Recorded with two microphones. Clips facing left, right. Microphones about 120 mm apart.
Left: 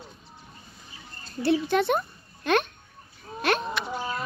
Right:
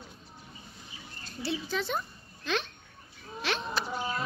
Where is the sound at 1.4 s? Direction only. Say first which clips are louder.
Left 10 dB; 60° left (ahead or behind).